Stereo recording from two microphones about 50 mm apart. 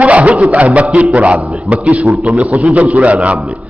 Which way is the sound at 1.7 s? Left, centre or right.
Right.